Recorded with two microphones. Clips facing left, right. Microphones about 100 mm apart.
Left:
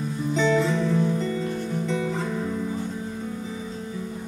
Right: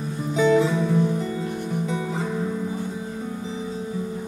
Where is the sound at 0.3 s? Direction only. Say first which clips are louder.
Right 3 dB; 10° right (ahead or behind).